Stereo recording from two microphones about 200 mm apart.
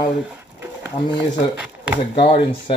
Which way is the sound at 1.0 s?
30° left (ahead or behind).